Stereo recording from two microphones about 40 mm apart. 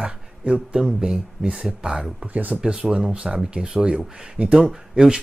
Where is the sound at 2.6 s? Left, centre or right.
Right.